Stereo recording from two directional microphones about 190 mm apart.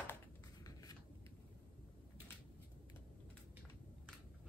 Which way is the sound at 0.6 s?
20° left (ahead or behind).